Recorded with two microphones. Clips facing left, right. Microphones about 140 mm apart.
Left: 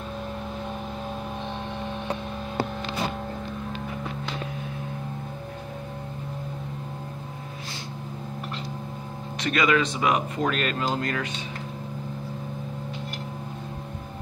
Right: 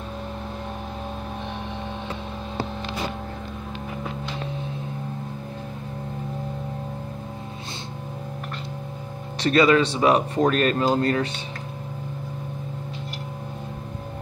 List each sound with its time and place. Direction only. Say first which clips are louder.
9.4 s speech: right 5 dB; 35° right (ahead or behind)